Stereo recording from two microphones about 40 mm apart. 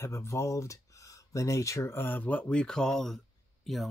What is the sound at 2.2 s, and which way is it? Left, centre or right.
Speech, left.